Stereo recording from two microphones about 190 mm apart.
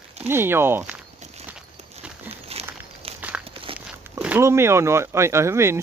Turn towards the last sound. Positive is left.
turn(degrees=-15)  # may be behind; listen again after turning